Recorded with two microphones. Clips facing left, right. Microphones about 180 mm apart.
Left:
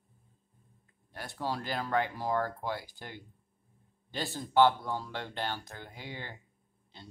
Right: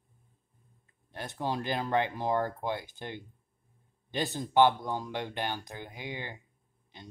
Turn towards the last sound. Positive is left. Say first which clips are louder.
# right 4 dB
turn(degrees=-15)  # may be behind; listen again after turning